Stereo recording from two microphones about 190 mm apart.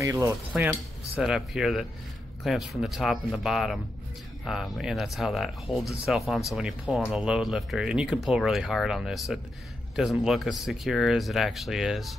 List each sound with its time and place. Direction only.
0.0 s cutlery: 15° right (ahead or behind)
0.6 s speech: 10° right (ahead or behind)